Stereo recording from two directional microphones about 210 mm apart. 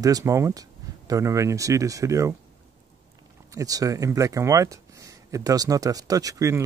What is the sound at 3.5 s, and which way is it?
Speech, 15° right (ahead or behind).